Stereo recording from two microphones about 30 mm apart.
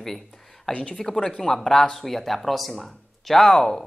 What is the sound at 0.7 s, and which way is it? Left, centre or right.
Speech, centre.